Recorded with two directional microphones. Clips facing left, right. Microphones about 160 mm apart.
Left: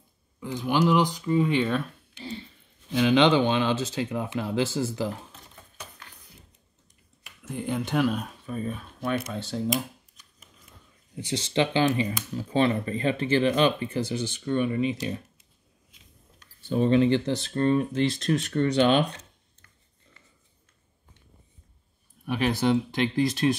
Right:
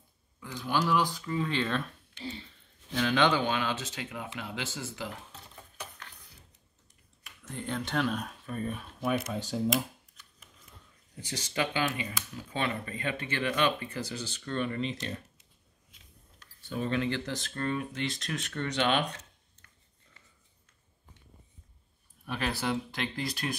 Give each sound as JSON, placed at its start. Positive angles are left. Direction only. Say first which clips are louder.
{"t": 0.4, "sound": "speech", "louder": "left 6 dB", "side_deg": 20}
{"t": 2.9, "sound": "speech", "louder": "left 6 dB", "side_deg": 15}
{"t": 7.4, "sound": "speech", "louder": "left 6 dB", "side_deg": 10}
{"t": 11.1, "sound": "speech", "louder": "left 8 dB", "side_deg": 20}
{"t": 16.3, "sound": "speech", "louder": "left 10 dB", "side_deg": 25}
{"t": 22.2, "sound": "speech", "louder": "left 8 dB", "side_deg": 15}